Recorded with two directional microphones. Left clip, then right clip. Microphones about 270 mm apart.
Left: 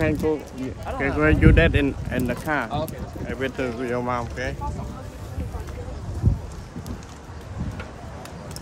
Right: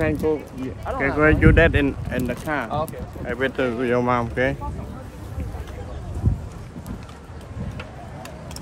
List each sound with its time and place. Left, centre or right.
0.0 s speech: centre
3.3 s speech: centre